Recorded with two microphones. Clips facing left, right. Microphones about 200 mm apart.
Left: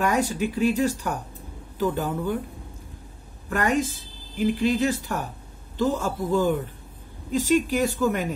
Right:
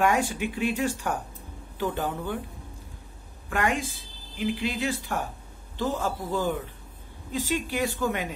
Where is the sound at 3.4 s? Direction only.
40° left (ahead or behind).